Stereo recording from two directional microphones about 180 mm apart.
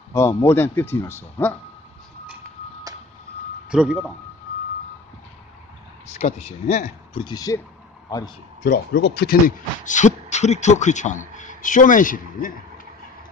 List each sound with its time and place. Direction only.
0.1 s a man's voice: 15° left (ahead or behind)
3.7 s speech: 5° right (ahead or behind)
6.1 s speech: 35° left (ahead or behind)
7.2 s speech: 20° left (ahead or behind)
8.6 s speech: 60° left (ahead or behind)
9.8 s a man's voice: 40° left (ahead or behind)